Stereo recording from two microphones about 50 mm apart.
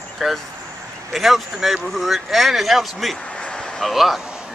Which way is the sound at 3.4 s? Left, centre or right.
Centre.